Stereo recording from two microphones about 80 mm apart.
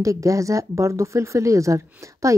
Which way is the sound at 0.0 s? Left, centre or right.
Right.